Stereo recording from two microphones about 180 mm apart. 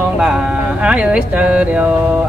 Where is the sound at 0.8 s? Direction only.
5° right (ahead or behind).